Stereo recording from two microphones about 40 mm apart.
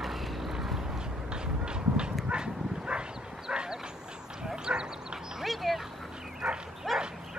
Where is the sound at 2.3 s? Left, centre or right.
Right.